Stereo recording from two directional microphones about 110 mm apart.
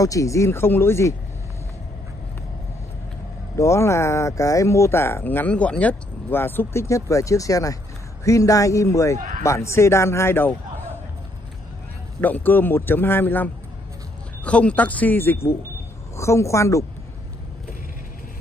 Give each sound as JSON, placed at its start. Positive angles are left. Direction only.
{"t": 0.0, "sound": "speech", "side_deg": 30}
{"t": 3.5, "sound": "speech", "side_deg": 25}
{"t": 12.2, "sound": "speech", "side_deg": 15}